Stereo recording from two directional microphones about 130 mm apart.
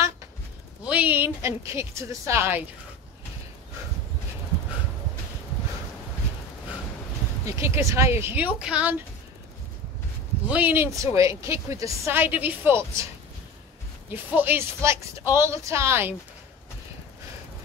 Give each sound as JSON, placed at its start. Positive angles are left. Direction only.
{"t": 0.8, "sound": "speech", "side_deg": -10}
{"t": 7.4, "sound": "speech", "side_deg": -20}
{"t": 10.5, "sound": "a woman's voice", "side_deg": -15}
{"t": 14.1, "sound": "speech", "side_deg": -15}